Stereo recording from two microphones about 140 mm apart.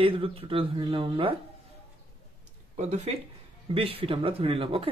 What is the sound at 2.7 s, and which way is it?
Speech, 55° right (ahead or behind).